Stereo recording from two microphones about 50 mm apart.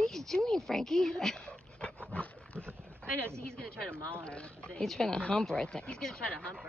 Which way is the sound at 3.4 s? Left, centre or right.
Centre.